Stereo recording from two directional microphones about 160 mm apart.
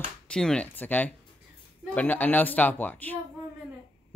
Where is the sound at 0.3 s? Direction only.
5° left (ahead or behind).